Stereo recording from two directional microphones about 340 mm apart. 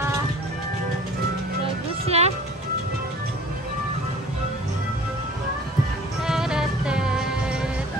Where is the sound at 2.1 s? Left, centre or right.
Centre.